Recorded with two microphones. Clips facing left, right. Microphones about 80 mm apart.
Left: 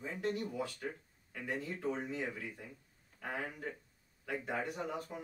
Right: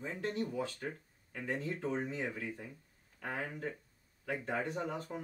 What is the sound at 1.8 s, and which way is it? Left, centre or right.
Speech, right.